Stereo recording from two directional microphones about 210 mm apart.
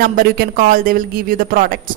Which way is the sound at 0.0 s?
45° right (ahead or behind).